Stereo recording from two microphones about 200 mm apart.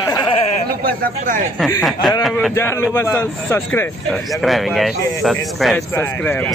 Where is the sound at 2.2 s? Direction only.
Centre (ahead or behind).